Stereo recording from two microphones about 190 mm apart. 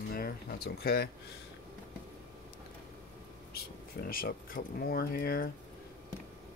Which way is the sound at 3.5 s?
50° left (ahead or behind).